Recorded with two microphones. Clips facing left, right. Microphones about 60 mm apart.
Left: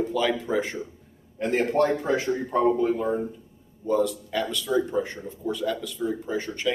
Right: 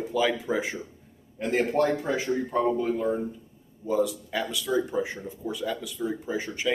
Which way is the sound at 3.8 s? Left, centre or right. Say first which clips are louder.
Left 2 dB; centre.